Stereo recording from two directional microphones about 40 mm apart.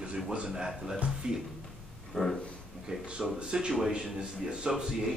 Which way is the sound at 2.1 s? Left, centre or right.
Centre.